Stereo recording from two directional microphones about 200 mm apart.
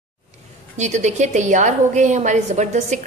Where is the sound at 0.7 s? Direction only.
35° right (ahead or behind).